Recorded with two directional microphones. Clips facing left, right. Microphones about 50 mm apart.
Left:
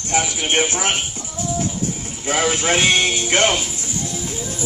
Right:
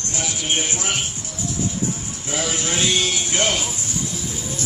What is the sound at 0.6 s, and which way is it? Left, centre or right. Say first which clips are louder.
Speech: left 6 dB; left.